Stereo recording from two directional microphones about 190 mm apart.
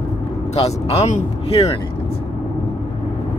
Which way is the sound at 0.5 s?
35° left (ahead or behind).